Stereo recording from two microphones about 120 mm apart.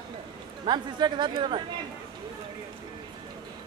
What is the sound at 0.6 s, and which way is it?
Speech, 40° right (ahead or behind).